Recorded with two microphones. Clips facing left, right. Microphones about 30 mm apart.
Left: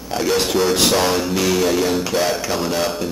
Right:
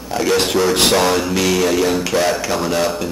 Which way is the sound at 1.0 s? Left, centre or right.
Centre.